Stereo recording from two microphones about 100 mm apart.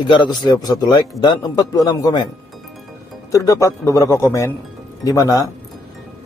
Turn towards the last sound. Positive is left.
turn(degrees=35)  # may be behind; listen again after turning